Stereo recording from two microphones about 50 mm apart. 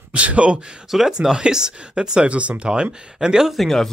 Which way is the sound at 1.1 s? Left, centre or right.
Centre.